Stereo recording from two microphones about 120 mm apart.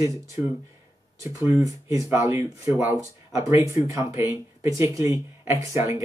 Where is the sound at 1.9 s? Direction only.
20° right (ahead or behind).